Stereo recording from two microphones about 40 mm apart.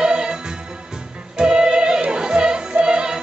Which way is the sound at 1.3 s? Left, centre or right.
Centre.